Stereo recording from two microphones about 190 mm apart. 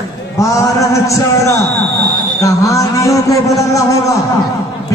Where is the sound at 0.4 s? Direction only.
15° left (ahead or behind).